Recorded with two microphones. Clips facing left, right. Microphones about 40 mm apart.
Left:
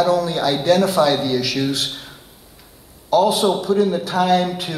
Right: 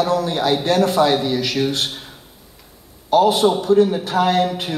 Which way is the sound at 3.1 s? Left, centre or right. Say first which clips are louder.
Right 1 dB; right.